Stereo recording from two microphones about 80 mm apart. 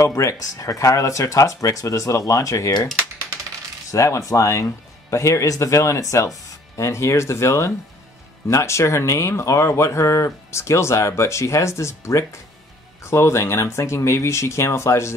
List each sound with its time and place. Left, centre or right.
0.0 s speech: left
3.9 s speech: left